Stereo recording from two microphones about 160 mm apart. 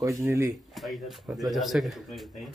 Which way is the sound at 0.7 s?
Centre (ahead or behind).